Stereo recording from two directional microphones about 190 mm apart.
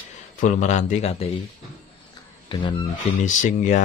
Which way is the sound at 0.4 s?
40° left (ahead or behind).